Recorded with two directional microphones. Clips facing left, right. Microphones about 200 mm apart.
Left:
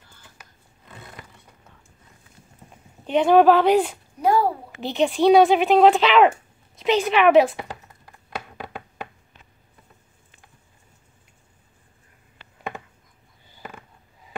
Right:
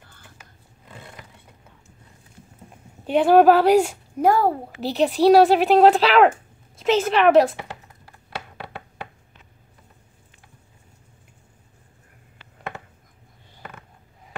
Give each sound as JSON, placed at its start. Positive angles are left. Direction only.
{"t": 3.1, "sound": "a woman's voice", "side_deg": -5}
{"t": 4.2, "sound": "a child's voice", "side_deg": -50}
{"t": 5.1, "sound": "speech", "side_deg": -5}